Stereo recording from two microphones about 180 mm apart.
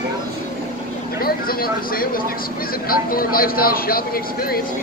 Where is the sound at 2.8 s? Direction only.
55° left (ahead or behind).